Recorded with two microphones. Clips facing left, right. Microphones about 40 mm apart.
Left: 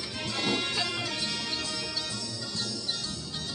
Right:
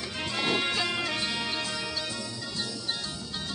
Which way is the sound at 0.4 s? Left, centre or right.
Centre.